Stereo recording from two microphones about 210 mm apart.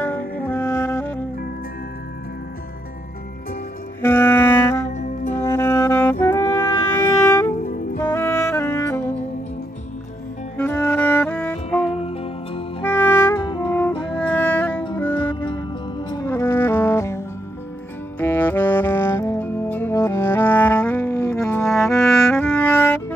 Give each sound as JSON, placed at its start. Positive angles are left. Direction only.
{"t": 0.4, "sound": "music", "side_deg": 10}
{"t": 4.0, "sound": "music", "side_deg": 10}
{"t": 7.6, "sound": "music", "side_deg": 40}
{"t": 8.0, "sound": "saxophone", "side_deg": 10}
{"t": 10.6, "sound": "music", "side_deg": 10}
{"t": 11.9, "sound": "music", "side_deg": 30}
{"t": 12.8, "sound": "music", "side_deg": 10}
{"t": 13.4, "sound": "music", "side_deg": 20}
{"t": 13.7, "sound": "music", "side_deg": 10}
{"t": 15.1, "sound": "music", "side_deg": 20}
{"t": 18.2, "sound": "music", "side_deg": 10}